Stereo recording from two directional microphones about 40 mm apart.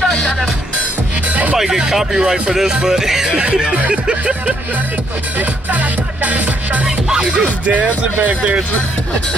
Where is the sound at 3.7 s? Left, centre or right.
Right.